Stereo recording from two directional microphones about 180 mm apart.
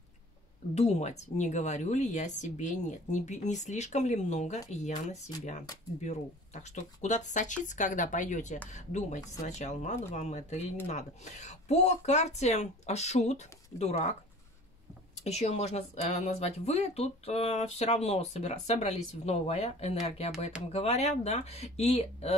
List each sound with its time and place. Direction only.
0.7 s speech: 35° left (ahead or behind)
15.2 s speech: 35° left (ahead or behind)